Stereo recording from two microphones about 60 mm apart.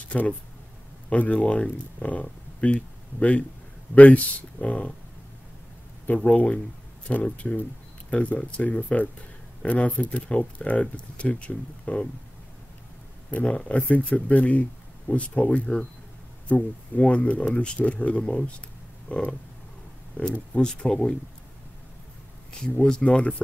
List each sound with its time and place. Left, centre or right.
0.1 s speech: left
6.0 s speech: left
13.3 s speech: left
22.5 s speech: centre